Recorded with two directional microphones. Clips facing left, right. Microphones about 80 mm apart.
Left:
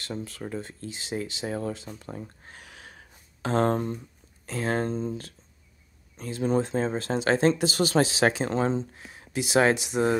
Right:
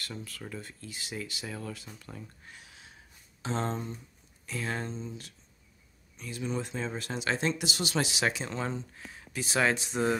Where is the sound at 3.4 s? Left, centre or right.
Left.